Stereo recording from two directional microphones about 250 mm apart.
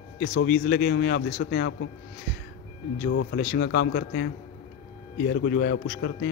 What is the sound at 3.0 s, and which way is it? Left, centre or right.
Speech, left.